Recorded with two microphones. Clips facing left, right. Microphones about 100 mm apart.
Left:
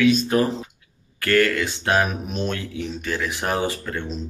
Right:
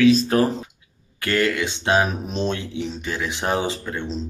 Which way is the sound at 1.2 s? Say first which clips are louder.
Left 2 dB; 20° right (ahead or behind).